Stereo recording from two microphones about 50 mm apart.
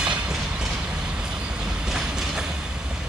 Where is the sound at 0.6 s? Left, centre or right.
Centre.